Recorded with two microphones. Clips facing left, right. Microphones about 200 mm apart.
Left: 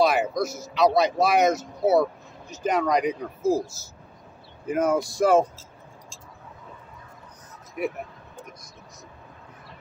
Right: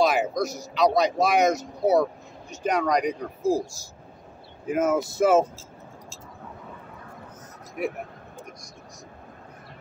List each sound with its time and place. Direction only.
0.0 s speech: centre (ahead or behind)
4.6 s speech: centre (ahead or behind)